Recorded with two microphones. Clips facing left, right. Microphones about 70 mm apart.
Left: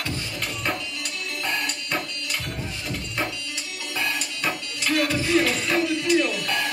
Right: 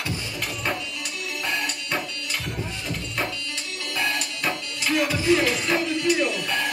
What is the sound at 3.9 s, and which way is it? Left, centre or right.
Music, centre.